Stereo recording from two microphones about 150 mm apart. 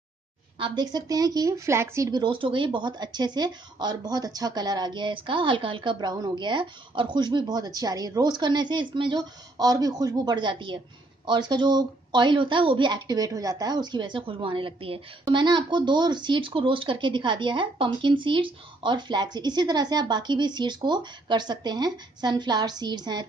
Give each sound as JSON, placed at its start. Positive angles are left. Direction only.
{"t": 0.6, "sound": "speech", "side_deg": -30}